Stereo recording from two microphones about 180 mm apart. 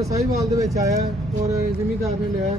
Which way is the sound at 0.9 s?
40° right (ahead or behind).